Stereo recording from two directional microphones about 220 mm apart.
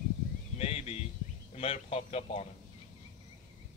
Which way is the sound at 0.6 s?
30° left (ahead or behind).